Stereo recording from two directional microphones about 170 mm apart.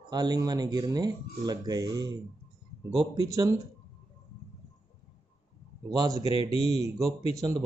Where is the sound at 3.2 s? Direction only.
20° right (ahead or behind).